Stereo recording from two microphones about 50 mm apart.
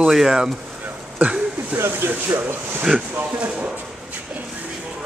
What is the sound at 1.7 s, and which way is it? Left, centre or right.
Speech, right.